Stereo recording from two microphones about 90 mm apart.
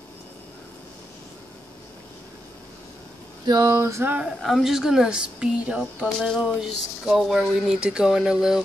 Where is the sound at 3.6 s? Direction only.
35° right (ahead or behind).